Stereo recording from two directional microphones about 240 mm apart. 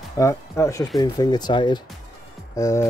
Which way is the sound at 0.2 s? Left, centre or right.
Centre.